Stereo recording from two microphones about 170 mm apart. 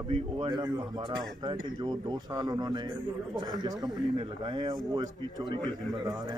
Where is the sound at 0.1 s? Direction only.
30° right (ahead or behind).